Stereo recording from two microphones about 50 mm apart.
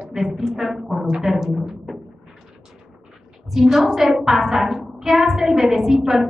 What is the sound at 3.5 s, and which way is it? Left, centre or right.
A woman's voice, centre.